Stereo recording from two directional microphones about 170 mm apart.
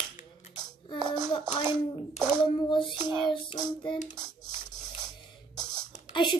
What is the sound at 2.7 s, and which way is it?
Speech, 30° left (ahead or behind).